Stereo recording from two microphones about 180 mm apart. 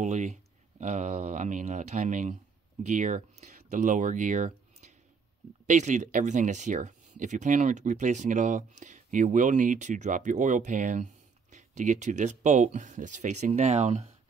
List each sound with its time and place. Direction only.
0.0 s speech: 40° right (ahead or behind)